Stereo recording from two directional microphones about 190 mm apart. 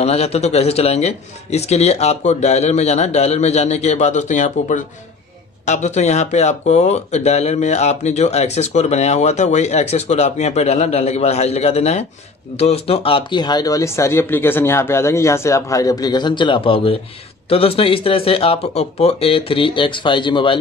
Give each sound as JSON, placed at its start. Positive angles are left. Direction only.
{"t": 0.0, "sound": "speech", "side_deg": 35}